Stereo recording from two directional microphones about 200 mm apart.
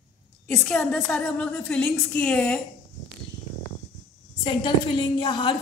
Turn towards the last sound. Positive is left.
turn(degrees=20)  # may be behind; listen again after turning